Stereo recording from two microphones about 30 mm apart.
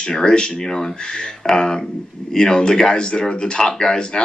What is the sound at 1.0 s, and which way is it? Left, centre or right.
Speech, left.